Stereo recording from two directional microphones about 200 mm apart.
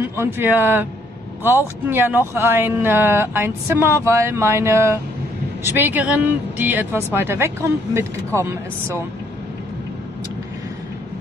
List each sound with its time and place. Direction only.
0.0 s speech: 10° right (ahead or behind)